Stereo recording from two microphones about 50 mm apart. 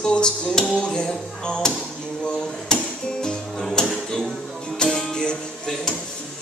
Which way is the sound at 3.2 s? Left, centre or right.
Centre.